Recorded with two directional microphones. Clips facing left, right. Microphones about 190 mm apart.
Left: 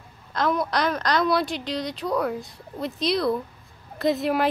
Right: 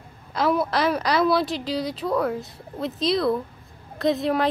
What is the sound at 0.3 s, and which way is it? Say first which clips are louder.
A woman's voice: right 2 dB; 5° right (ahead or behind).